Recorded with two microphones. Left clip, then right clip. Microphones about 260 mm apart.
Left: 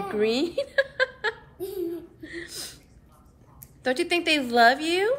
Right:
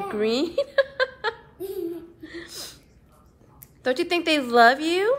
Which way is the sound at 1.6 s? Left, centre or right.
Centre.